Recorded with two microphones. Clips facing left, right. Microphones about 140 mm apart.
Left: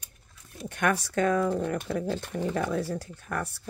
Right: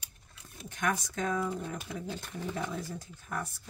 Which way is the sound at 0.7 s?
65° left (ahead or behind).